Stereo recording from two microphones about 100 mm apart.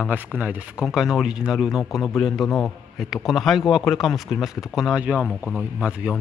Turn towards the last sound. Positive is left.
turn(degrees=-10)  # may be behind; listen again after turning